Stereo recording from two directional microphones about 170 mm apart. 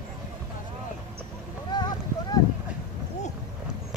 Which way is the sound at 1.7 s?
25° left (ahead or behind).